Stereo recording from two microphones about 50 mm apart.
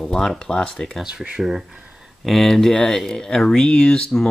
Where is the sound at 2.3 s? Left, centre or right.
Centre.